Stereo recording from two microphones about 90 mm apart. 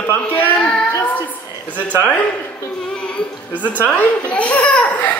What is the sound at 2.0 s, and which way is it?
A child's voice, 20° left (ahead or behind).